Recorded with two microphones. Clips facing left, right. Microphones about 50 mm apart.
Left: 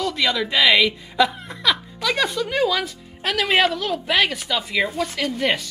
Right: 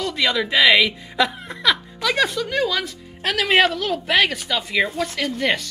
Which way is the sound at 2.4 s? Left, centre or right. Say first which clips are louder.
Left 1 dB; centre.